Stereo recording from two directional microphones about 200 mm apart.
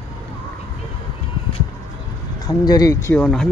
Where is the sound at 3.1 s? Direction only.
5° left (ahead or behind).